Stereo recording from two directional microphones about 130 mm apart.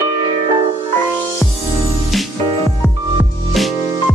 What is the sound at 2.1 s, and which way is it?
Music, centre (ahead or behind).